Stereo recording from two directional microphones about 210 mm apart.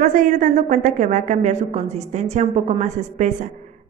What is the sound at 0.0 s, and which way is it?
A woman's voice, 40° right (ahead or behind).